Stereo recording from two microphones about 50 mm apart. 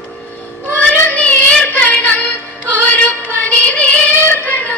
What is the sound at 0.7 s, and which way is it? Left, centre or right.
Child singing, left.